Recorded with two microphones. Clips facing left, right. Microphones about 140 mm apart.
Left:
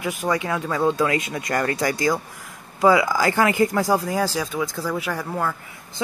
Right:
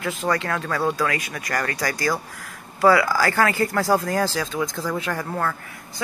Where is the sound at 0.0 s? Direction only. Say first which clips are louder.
Even; 15° left (ahead or behind).